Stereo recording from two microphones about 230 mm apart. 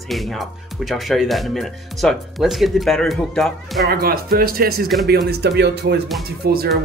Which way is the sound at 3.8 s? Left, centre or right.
Right.